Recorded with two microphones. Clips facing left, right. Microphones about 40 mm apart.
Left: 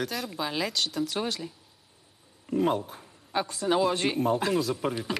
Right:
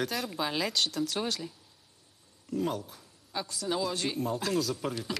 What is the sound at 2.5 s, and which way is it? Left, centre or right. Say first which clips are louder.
Speech: left 6 dB; left.